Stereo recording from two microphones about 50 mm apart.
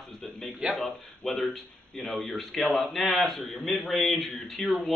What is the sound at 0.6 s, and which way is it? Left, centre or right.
Speech, centre.